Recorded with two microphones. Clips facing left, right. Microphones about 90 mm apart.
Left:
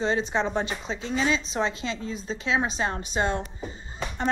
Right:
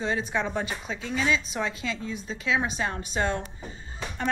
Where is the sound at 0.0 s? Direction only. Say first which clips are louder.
Left 3 dB; 30° left (ahead or behind).